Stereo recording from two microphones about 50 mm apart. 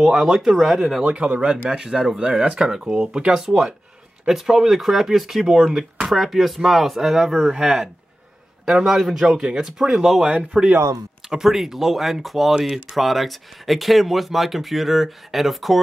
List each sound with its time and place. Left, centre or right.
0.0 s speech: centre
1.0 s speech: right
9.8 s speech: centre